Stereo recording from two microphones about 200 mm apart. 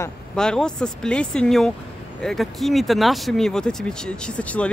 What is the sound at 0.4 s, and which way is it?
Speech, 5° left (ahead or behind).